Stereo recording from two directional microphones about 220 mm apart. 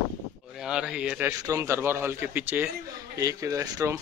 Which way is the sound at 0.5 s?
5° right (ahead or behind).